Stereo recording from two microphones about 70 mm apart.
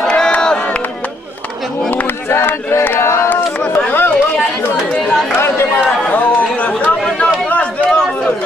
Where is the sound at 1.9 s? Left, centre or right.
Left.